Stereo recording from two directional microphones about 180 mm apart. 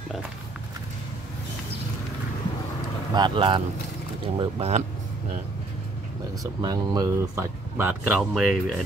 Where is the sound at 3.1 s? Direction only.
25° right (ahead or behind).